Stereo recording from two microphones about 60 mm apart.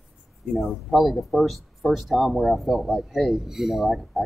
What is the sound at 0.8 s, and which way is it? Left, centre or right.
Speech, centre.